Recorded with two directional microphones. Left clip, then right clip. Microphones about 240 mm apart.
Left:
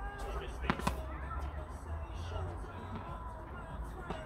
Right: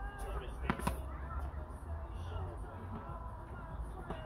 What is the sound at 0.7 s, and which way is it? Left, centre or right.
Fireworks, centre.